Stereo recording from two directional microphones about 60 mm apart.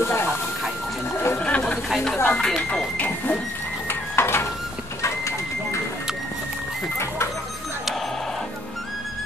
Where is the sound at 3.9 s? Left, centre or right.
Left.